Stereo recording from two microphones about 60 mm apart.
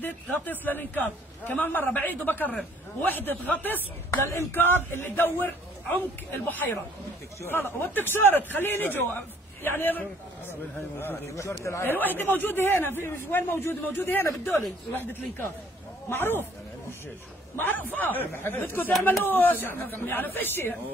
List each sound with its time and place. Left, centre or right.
0.0 s a man's voice: left
4.1 s speech: left
4.5 s a man's voice: left
7.4 s a man's voice: left
11.6 s speech: left
11.9 s a man's voice: left
16.1 s a man's voice: left
17.6 s a man's voice: left